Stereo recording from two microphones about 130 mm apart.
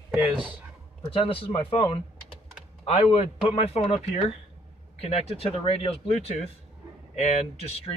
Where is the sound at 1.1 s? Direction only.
40° left (ahead or behind).